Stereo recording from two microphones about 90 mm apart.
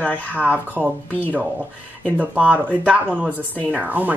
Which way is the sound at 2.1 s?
15° right (ahead or behind).